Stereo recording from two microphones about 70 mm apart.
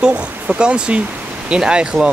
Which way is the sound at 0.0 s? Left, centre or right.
Centre.